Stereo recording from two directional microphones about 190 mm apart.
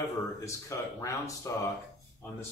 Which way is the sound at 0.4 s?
15° left (ahead or behind).